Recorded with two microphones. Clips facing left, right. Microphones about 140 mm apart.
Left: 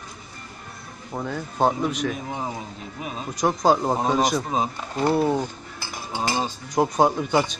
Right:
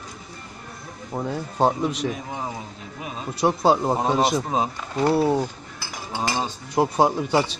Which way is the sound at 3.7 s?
Centre (ahead or behind).